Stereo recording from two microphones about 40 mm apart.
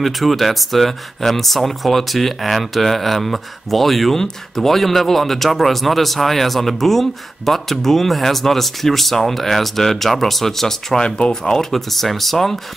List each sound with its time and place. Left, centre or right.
0.0 s speech: centre
11.0 s speech: left
11.5 s speech: centre